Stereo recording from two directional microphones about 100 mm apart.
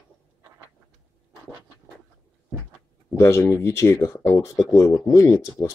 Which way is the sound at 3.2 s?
25° left (ahead or behind).